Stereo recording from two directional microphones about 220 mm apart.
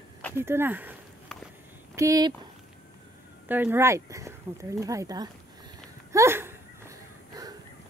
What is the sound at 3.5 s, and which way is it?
Speech, 10° right (ahead or behind).